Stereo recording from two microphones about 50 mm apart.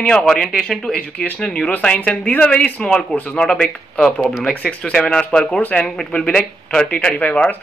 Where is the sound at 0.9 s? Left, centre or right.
Left.